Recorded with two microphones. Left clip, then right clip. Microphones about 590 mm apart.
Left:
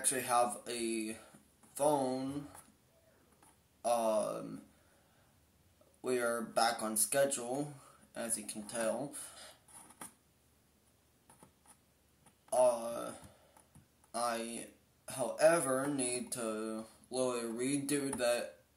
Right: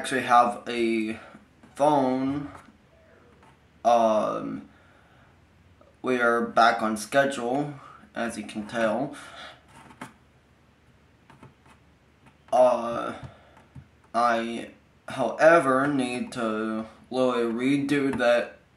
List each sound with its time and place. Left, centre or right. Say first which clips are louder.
0.0 s speech: right 12 dB; left
3.8 s speech: right 12 dB; left
6.0 s speech: right 12 dB; left
12.4 s speech: right 10 dB; left
14.1 s speech: right 14 dB; left